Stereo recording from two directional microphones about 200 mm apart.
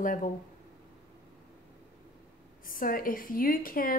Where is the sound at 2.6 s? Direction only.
45° left (ahead or behind).